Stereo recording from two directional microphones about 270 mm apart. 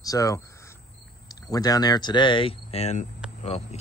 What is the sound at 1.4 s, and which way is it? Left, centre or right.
Speech, centre.